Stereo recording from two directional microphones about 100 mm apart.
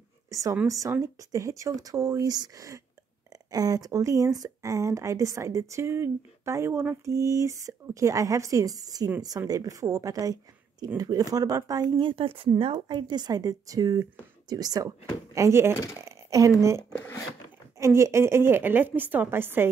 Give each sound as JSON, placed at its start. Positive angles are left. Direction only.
{"t": 0.3, "sound": "speech", "side_deg": -35}
{"t": 12.0, "sound": "a woman's voice", "side_deg": -60}
{"t": 15.3, "sound": "a woman's voice", "side_deg": -30}
{"t": 17.7, "sound": "a woman's voice", "side_deg": -30}